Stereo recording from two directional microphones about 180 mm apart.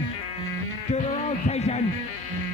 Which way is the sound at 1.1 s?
35° left (ahead or behind).